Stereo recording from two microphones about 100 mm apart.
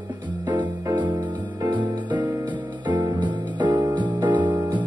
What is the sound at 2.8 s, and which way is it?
Music, 50° right (ahead or behind).